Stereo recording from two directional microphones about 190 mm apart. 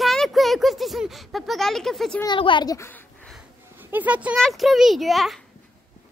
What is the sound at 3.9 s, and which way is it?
Speech, 5° right (ahead or behind).